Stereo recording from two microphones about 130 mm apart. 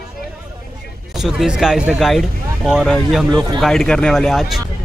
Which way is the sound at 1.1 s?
5° right (ahead or behind).